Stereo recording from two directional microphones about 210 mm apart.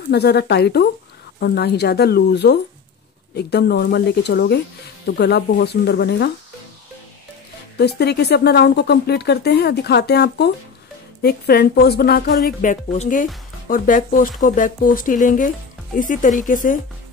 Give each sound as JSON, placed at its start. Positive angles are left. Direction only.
{"t": 0.1, "sound": "speech", "side_deg": 50}
{"t": 7.7, "sound": "speech", "side_deg": 50}
{"t": 12.9, "sound": "speech", "side_deg": 35}